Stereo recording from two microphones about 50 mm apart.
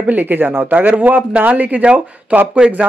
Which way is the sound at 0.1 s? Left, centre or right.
Right.